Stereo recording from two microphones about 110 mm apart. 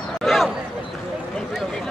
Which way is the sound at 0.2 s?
Centre (ahead or behind).